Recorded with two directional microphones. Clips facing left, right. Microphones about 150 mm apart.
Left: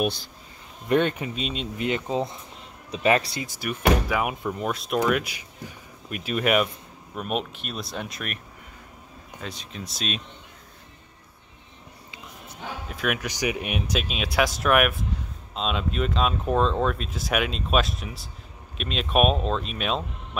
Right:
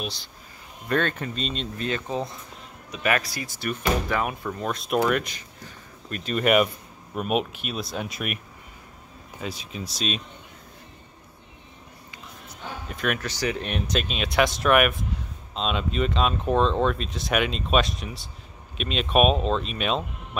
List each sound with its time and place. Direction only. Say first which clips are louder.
0.8 s speech: left 3 dB; 15° left (ahead or behind)
4.7 s speech: right 2 dB; centre (ahead or behind)
5.2 s speech: left 2 dB; 10° left (ahead or behind)
9.4 s speech: right 3 dB; 5° right (ahead or behind)
12.8 s speech: even; 5° left (ahead or behind)